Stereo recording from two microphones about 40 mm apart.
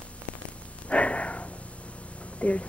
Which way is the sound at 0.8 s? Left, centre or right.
Left.